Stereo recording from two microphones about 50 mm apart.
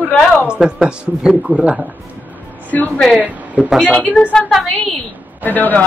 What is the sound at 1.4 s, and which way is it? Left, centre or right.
Speech, right.